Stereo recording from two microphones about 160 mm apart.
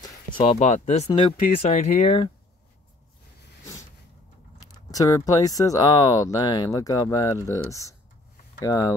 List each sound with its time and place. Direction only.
0.0 s speech: 30° left (ahead or behind)
4.7 s speech: 20° left (ahead or behind)